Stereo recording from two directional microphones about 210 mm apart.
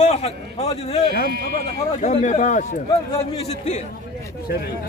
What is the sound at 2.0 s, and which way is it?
A man's voice, 35° left (ahead or behind).